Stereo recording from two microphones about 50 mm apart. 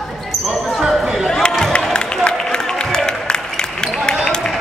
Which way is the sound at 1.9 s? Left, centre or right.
Centre.